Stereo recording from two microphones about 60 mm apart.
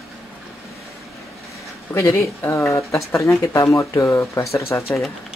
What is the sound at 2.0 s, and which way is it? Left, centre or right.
Speech, left.